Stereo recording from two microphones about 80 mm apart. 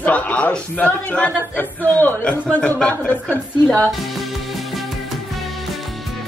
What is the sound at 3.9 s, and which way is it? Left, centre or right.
Music, centre.